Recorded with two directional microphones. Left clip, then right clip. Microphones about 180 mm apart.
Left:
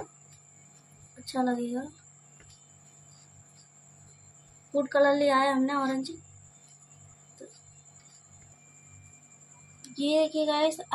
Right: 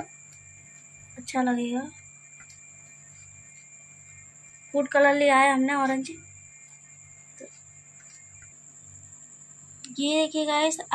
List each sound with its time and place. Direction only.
1.3 s a woman's voice: 5° left (ahead or behind)
4.7 s a woman's voice: centre (ahead or behind)
9.9 s a woman's voice: centre (ahead or behind)